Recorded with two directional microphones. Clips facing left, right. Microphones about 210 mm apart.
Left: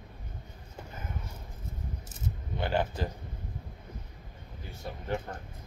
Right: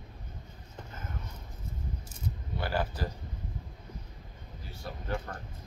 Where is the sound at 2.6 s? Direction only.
25° left (ahead or behind).